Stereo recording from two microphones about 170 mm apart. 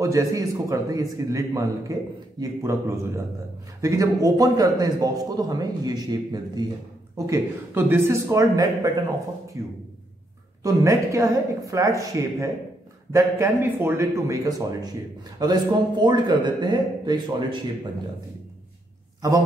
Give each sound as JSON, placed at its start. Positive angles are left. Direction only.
{"t": 0.0, "sound": "a man's voice", "side_deg": -20}